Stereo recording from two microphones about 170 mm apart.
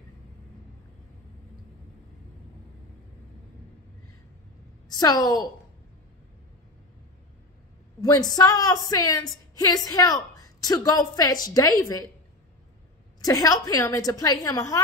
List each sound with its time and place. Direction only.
4.8 s a woman's voice: 25° left (ahead or behind)
8.0 s a woman's voice: 20° left (ahead or behind)
13.2 s a woman's voice: 20° left (ahead or behind)